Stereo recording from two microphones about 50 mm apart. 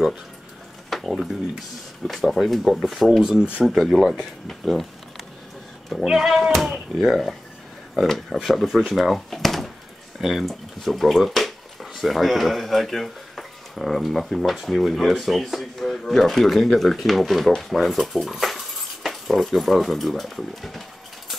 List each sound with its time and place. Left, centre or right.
0.8 s a sound: centre
2.0 s speech: centre
3.3 s speech: centre
3.6 s speech: centre
5.9 s speech: centre
6.3 s speech: centre